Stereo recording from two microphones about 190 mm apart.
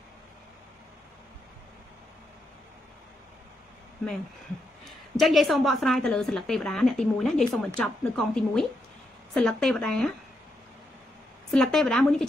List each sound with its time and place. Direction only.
4.8 s a woman's voice: centre (ahead or behind)
11.5 s a woman's voice: 5° left (ahead or behind)